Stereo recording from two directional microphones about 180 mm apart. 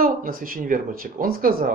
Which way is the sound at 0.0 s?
50° right (ahead or behind).